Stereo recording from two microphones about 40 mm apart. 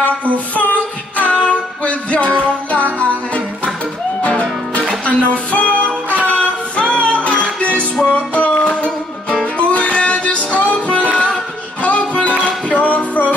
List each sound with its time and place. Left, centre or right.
0.6 s music: left
6.2 s singing: left
7.2 s music: left
9.6 s music: left